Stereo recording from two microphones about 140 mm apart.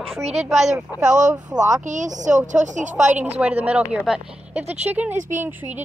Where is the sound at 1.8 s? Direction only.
65° right (ahead or behind).